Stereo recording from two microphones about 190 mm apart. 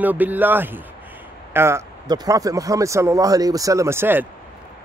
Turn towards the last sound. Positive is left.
turn(degrees=-10)  # may be behind; listen again after turning